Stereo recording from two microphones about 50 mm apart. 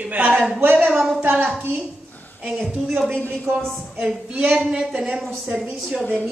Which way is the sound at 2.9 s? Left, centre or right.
Centre.